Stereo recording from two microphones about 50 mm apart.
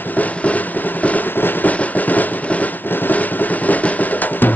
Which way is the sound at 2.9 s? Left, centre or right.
Left.